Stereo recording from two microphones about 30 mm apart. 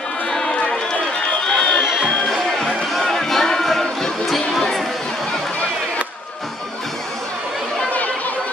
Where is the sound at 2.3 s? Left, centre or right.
Centre.